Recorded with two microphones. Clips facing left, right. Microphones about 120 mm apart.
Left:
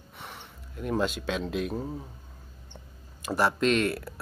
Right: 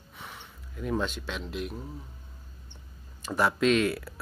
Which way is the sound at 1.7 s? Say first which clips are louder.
Left 7 dB; 30° left (ahead or behind).